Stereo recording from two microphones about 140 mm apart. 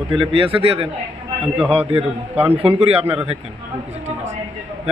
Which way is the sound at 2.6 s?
45° right (ahead or behind).